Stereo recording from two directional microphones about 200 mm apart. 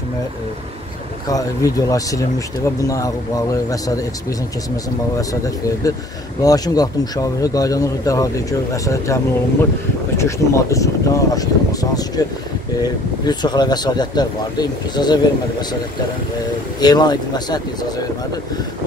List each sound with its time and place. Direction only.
1.3 s speech: 15° left (ahead or behind)
5.1 s speech: 15° left (ahead or behind)
16.8 s speech: 20° left (ahead or behind)